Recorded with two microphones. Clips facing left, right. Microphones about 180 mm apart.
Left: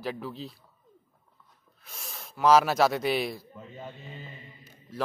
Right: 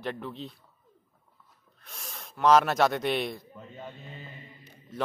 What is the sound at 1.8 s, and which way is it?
Speech, centre (ahead or behind).